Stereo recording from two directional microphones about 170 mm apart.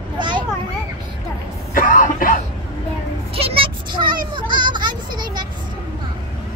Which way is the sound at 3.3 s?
35° right (ahead or behind).